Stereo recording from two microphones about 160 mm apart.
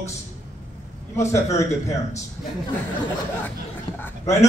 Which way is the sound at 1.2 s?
20° left (ahead or behind).